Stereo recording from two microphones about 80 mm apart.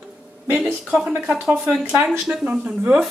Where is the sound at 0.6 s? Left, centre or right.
Centre.